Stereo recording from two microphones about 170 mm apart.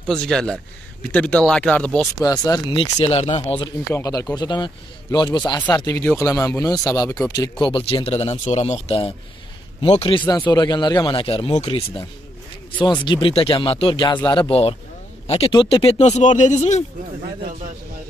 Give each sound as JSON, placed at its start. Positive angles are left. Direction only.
{"t": 0.1, "sound": "speech", "side_deg": 5}
{"t": 2.1, "sound": "speech", "side_deg": 20}
{"t": 3.0, "sound": "speech", "side_deg": 40}
{"t": 3.9, "sound": "speech", "side_deg": 20}
{"t": 5.8, "sound": "speech", "side_deg": 15}
{"t": 7.6, "sound": "speech", "side_deg": 35}
{"t": 14.5, "sound": "speech", "side_deg": 35}